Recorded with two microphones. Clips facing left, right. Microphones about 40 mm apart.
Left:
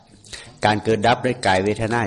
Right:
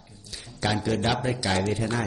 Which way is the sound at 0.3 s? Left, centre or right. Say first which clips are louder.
Left 9 dB; left.